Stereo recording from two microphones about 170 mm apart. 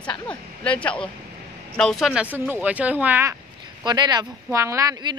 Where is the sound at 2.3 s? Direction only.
10° right (ahead or behind).